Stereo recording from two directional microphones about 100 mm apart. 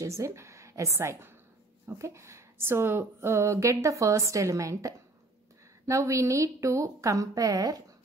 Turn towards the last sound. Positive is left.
turn(degrees=-40)  # may be behind; listen again after turning